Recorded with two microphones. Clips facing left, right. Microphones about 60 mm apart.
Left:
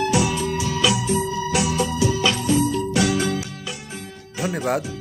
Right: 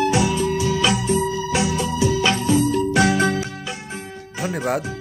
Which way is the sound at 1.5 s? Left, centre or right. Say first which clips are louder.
Even; right.